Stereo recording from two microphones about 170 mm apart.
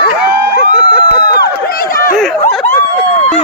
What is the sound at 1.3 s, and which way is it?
Run, 60° left (ahead or behind).